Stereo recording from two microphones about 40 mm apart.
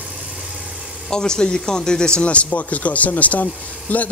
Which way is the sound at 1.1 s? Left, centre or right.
Centre.